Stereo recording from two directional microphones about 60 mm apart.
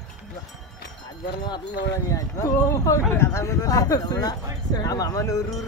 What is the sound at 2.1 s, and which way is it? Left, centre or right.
Speech, left.